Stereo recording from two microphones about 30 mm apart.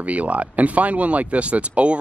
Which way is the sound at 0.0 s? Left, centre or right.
Right.